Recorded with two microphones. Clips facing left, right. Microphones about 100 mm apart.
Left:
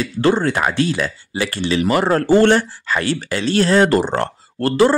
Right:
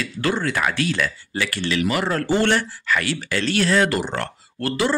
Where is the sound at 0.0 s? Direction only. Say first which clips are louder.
Left 7 dB; 30° left (ahead or behind).